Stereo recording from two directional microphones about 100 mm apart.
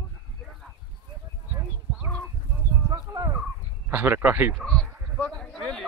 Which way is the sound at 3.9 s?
20° right (ahead or behind).